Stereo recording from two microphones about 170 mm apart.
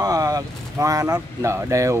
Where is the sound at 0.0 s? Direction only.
20° right (ahead or behind).